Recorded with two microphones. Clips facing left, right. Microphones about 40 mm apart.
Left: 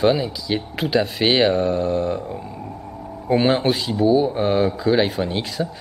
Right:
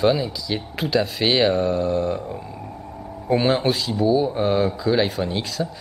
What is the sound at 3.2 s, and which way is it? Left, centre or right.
Speech, centre.